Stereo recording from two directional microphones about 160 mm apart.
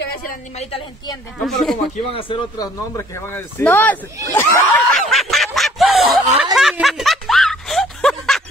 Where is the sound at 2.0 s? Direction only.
35° left (ahead or behind); by 4.8 s 15° left (ahead or behind).